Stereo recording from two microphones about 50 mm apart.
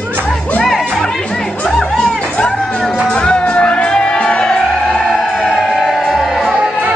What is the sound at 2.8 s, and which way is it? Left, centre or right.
Music, centre.